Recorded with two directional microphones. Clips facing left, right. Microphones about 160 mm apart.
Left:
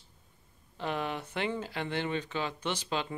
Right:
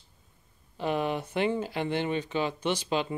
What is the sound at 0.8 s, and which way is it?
Speech, 15° right (ahead or behind).